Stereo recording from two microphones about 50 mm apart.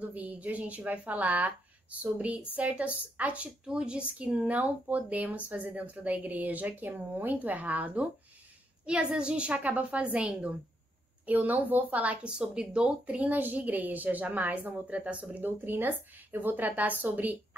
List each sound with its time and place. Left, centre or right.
0.0 s speech: right
3.6 s speech: centre
8.8 s speech: centre
9.6 s speech: right
12.3 s speech: centre
15.4 s speech: right